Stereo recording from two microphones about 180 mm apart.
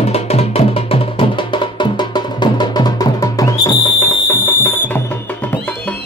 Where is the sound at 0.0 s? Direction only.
35° left (ahead or behind).